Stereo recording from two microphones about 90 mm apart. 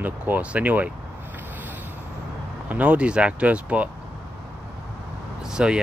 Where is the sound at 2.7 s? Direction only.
15° right (ahead or behind).